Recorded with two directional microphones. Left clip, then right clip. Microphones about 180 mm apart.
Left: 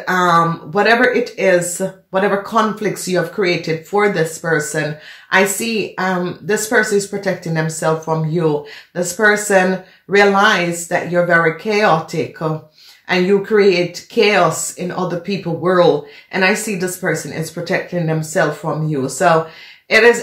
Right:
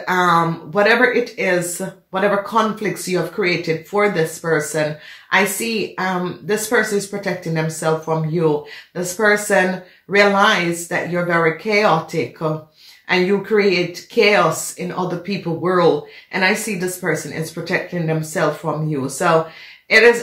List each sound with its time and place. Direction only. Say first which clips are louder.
0.0 s speech: left 2 dB; 35° left (ahead or behind)
8.9 s speech: left 2 dB; 35° left (ahead or behind)